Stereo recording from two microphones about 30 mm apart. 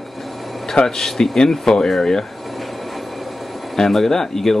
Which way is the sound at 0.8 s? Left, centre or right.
Centre.